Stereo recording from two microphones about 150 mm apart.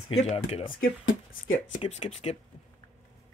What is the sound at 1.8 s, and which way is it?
Speech, 45° left (ahead or behind).